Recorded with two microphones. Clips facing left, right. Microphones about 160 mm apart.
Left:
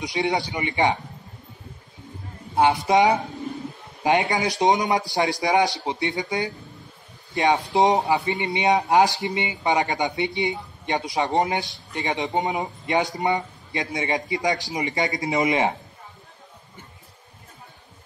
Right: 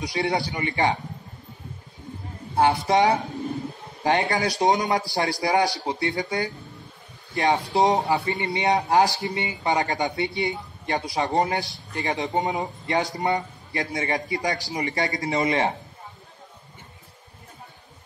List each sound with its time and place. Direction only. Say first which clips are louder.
0.0 s speech: left 1 dB; 20° left (ahead or behind)
2.5 s speech: left 1 dB; 15° left (ahead or behind)